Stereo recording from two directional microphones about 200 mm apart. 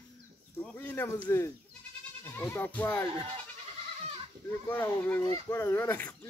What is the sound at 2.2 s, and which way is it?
Speech, 10° left (ahead or behind).